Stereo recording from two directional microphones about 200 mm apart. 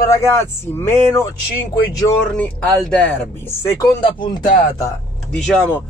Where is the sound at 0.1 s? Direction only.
15° left (ahead or behind).